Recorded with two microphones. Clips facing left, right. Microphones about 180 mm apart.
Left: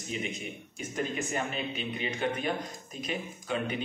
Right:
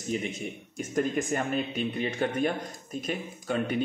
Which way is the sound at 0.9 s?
50° right (ahead or behind).